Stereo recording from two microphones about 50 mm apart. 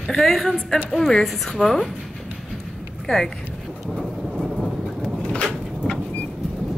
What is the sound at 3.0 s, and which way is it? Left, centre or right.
Speech, centre.